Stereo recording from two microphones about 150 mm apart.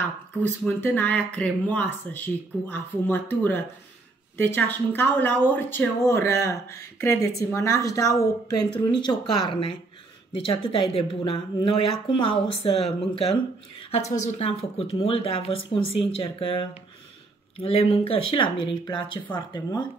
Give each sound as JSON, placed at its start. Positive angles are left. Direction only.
{"t": 0.4, "sound": "a woman's voice", "side_deg": 15}
{"t": 15.0, "sound": "speech", "side_deg": 40}